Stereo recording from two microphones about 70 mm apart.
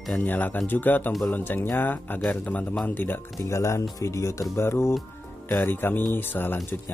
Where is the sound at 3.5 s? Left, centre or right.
Left.